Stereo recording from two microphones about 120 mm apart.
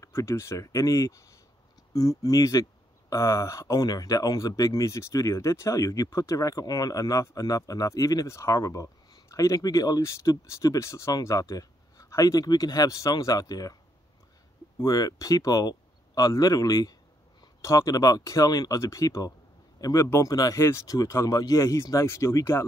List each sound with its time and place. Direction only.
0.0 s speech: 25° left (ahead or behind)
14.8 s speech: 30° left (ahead or behind)